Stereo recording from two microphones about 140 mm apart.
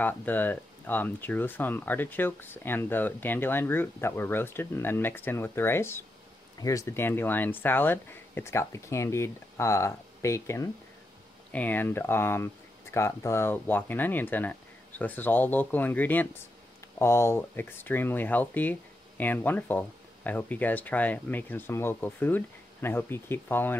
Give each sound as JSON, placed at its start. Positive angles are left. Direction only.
{"t": 0.0, "sound": "speech", "side_deg": 15}